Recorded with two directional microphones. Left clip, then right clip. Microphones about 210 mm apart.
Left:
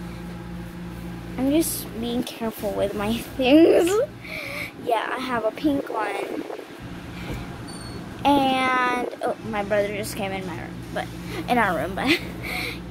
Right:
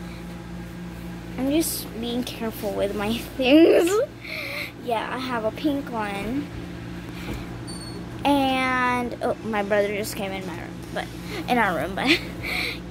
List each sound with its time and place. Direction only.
1.5 s speech: 5° left (ahead or behind)
8.2 s a child's voice: 5° left (ahead or behind)
9.5 s speech: 20° right (ahead or behind)
10.1 s a child's voice: centre (ahead or behind)